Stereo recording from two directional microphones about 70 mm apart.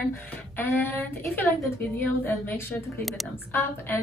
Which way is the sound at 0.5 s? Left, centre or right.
Left.